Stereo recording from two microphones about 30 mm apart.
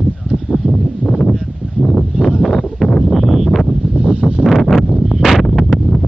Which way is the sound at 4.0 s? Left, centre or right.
Right.